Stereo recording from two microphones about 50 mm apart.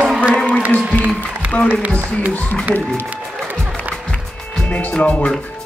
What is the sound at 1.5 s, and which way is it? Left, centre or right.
A man's voice, left.